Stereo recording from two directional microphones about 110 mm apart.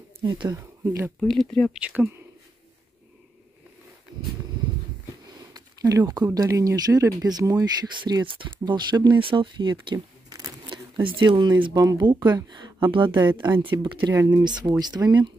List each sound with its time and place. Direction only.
0.5 s speech: 25° right (ahead or behind)
1.2 s speech: 5° left (ahead or behind)
1.7 s speech: 10° right (ahead or behind)
5.5 s a sound: 35° right (ahead or behind)
6.3 s speech: 35° right (ahead or behind)
8.0 s speech: 45° right (ahead or behind)
14.1 s speech: 30° right (ahead or behind)
14.4 s speech: 40° right (ahead or behind)